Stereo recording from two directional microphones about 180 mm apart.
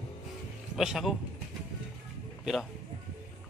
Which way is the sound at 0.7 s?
Centre (ahead or behind).